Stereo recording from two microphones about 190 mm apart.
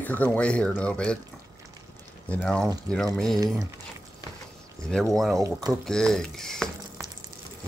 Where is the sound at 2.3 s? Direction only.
5° left (ahead or behind).